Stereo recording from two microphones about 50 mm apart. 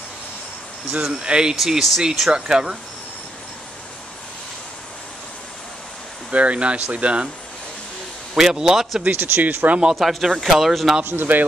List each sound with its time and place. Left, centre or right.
1.0 s speech: centre
1.6 s speech: centre
2.3 s speech: centre
6.3 s speech: right
8.4 s speech: centre
9.1 s speech: right
9.8 s speech: centre
11.1 s speech: right